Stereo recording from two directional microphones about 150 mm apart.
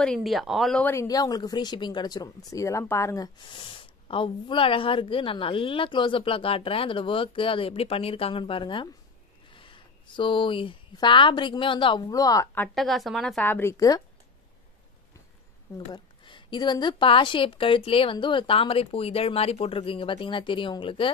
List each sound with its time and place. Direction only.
0.0 s speech: 5° left (ahead or behind)
0.8 s speech: 20° left (ahead or behind)
3.4 s speech: 35° left (ahead or behind)
12.7 s speech: centre (ahead or behind)
13.5 s speech: 15° left (ahead or behind)
15.9 s speech: 35° left (ahead or behind)